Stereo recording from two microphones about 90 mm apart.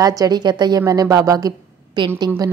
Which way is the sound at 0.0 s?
45° right (ahead or behind).